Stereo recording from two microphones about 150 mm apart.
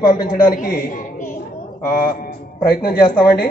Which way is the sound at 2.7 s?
85° left.